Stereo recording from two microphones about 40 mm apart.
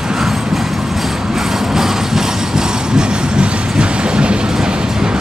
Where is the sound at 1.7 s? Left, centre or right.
Centre.